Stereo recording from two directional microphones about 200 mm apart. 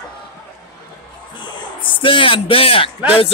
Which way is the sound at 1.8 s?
25° left (ahead or behind).